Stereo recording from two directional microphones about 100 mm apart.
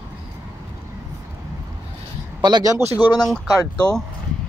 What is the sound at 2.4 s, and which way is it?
Speech, 45° right (ahead or behind).